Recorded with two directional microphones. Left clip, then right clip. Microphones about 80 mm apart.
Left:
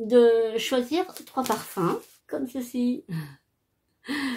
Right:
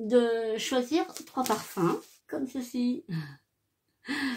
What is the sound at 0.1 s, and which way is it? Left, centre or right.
Speech, left.